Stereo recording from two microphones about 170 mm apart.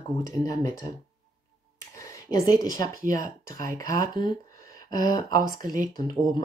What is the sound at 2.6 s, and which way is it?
Speech, 25° left (ahead or behind).